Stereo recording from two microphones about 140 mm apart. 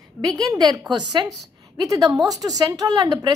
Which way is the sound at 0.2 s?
30° right (ahead or behind).